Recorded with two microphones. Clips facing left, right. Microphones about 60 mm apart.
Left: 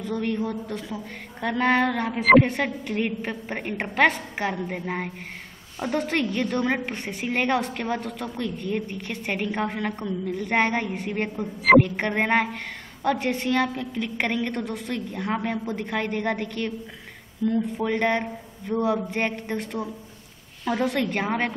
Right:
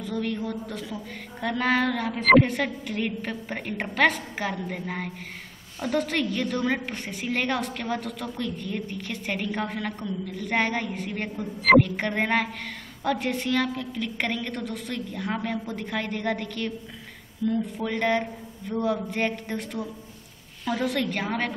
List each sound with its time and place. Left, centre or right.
0.0 s a woman's voice: centre
13.2 s a woman's voice: centre
20.8 s a woman's voice: centre